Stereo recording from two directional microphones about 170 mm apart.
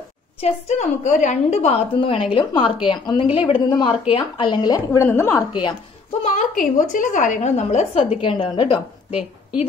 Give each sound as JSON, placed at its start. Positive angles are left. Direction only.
{"t": 0.4, "sound": "a woman's voice", "side_deg": 45}
{"t": 4.9, "sound": "a woman's voice", "side_deg": 15}
{"t": 5.5, "sound": "a woman's voice", "side_deg": 25}
{"t": 6.2, "sound": "a woman's voice", "side_deg": 50}
{"t": 8.1, "sound": "a woman's voice", "side_deg": 30}